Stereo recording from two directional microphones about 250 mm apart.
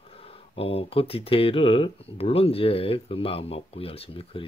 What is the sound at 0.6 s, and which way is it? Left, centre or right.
Speech, left.